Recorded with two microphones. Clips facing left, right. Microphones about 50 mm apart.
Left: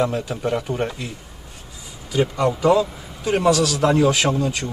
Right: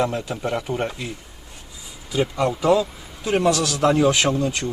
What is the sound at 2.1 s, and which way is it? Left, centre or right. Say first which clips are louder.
Speech: left 2 dB; centre.